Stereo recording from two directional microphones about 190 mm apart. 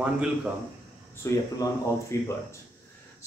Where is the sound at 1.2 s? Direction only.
15° left (ahead or behind).